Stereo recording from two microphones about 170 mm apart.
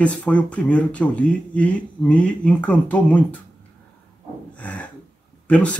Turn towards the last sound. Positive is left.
turn(degrees=5)  # may be behind; listen again after turning